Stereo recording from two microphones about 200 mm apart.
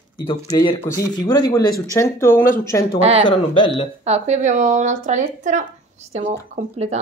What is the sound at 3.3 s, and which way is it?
Speech, 25° left (ahead or behind).